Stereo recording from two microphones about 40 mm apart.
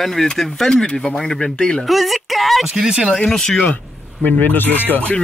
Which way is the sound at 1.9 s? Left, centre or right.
Centre.